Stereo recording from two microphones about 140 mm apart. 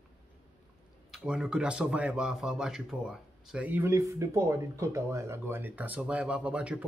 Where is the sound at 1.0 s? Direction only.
5° right (ahead or behind).